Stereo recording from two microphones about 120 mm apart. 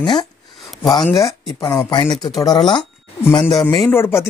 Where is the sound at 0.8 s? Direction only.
Centre (ahead or behind).